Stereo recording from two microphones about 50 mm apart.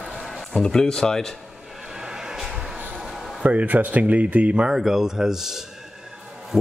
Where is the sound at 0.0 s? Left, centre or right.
Centre.